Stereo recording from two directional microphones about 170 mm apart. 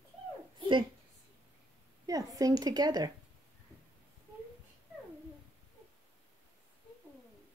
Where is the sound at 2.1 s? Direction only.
20° right (ahead or behind).